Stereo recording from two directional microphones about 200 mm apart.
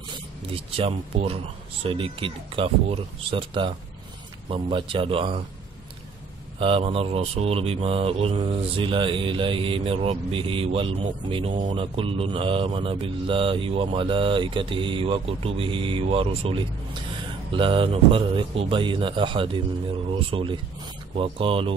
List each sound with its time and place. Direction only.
0.1 s speech: 25° right (ahead or behind)
6.6 s speech: 25° right (ahead or behind)